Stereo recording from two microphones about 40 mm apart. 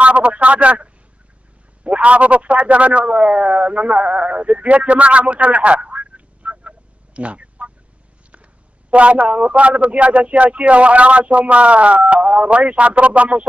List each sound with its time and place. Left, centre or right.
0.0 s a man's voice: right
1.9 s speech: right
7.2 s a sound: right
8.9 s speech: right